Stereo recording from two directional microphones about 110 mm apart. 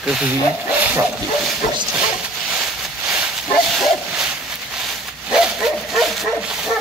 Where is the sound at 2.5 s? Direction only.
5° right (ahead or behind).